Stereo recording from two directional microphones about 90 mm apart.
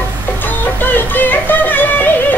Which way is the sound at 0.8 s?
20° left (ahead or behind).